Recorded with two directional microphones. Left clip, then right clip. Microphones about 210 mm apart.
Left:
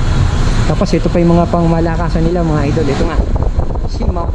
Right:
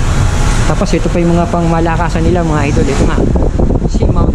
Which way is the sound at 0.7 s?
5° right (ahead or behind).